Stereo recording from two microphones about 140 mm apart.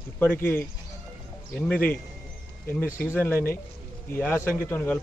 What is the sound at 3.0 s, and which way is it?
Speech, 10° left (ahead or behind).